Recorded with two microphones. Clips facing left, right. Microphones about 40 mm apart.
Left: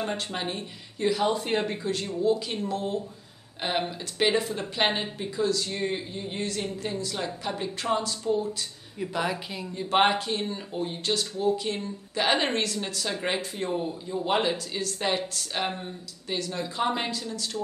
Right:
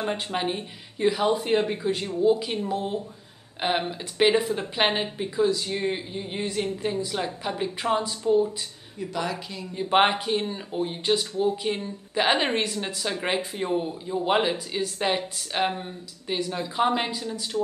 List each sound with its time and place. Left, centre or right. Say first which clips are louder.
0.0 s a woman's voice: right 3 dB; centre
9.0 s a woman's voice: left 1 dB; centre
9.8 s a woman's voice: right 2 dB; centre